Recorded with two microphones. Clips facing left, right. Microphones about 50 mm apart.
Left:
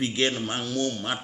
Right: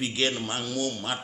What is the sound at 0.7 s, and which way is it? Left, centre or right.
Speech, centre.